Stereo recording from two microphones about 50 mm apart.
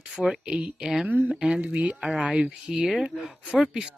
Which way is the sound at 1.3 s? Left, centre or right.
Centre.